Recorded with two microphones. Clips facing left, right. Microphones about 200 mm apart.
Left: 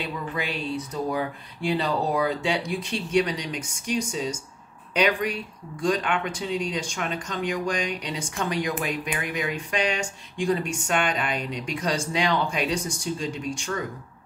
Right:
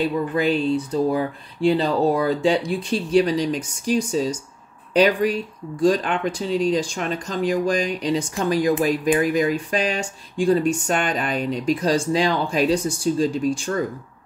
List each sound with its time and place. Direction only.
0.0 s speech: 35° right (ahead or behind)